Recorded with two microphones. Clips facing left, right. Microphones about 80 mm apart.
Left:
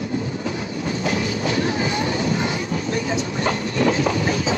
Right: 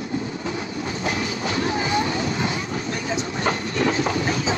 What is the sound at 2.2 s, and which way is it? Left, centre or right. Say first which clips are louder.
Music: left 2 dB; left.